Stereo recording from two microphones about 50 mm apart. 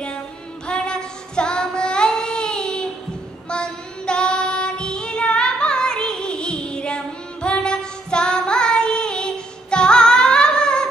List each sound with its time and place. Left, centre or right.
0.7 s child singing: centre